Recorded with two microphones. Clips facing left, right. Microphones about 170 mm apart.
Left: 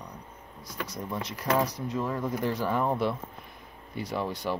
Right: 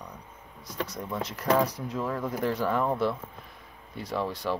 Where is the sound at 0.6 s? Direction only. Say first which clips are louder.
Right 3 dB; 25° right (ahead or behind).